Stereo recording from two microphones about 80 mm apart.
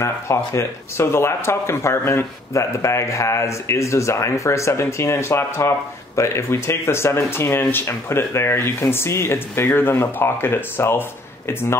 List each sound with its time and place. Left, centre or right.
0.0 s speech: left